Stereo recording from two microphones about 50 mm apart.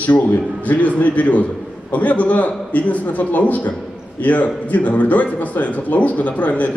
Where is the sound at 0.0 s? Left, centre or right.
Left.